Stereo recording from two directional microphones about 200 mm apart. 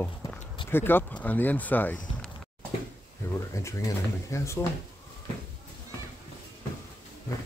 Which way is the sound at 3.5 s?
15° left (ahead or behind).